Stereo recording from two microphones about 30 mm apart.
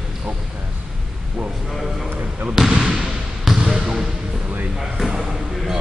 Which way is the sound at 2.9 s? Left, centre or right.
Centre.